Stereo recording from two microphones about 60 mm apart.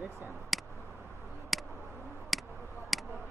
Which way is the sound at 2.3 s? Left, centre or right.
Centre.